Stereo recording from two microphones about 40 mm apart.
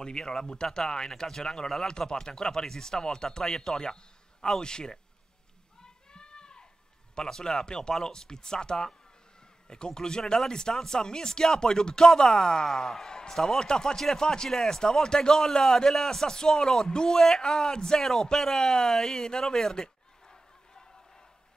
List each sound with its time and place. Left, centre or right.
0.0 s a man's voice: centre
1.9 s a man's voice: centre
5.8 s a sound: centre
7.2 s a man's voice: centre